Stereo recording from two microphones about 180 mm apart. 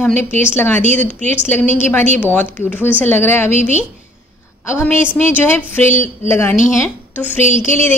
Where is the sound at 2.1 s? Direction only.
10° left (ahead or behind).